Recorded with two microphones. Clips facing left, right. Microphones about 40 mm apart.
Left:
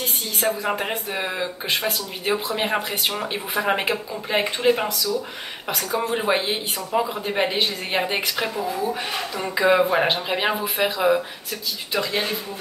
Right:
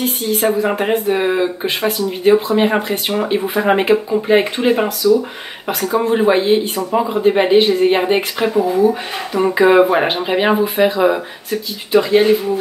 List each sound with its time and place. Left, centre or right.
0.0 s speech: right; by 6.6 s centre
7.1 s speech: centre
8.5 s speech: right